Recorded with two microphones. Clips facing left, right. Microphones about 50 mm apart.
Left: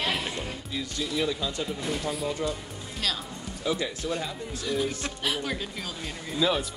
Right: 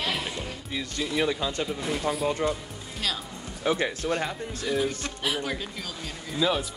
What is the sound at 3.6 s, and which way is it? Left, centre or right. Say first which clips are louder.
Speech: right 3 dB; right.